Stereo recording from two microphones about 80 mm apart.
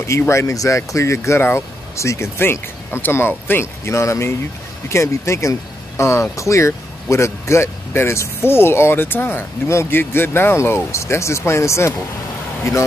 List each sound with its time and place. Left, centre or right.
0.2 s speech: left